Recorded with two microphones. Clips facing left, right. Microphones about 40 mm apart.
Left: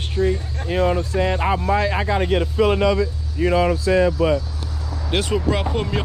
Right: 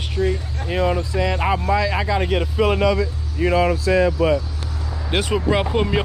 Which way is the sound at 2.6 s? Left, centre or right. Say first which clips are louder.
Even; right.